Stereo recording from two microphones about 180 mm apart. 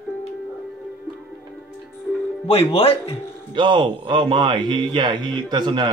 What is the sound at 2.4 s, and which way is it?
Speech, 35° left (ahead or behind).